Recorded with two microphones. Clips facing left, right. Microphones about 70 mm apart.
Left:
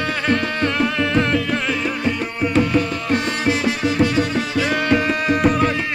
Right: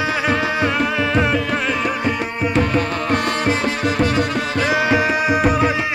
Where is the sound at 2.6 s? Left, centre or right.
Right.